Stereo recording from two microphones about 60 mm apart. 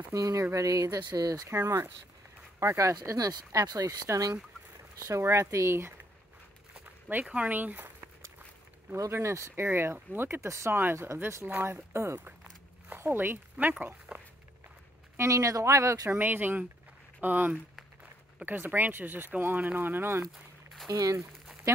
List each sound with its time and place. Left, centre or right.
0.1 s speech: right
1.5 s speech: right
3.2 s speech: right
4.9 s speech: right
7.1 s speech: right
9.1 s speech: right
9.7 s speech: right
15.1 s speech: right
16.2 s speech: right
20.9 s speech: right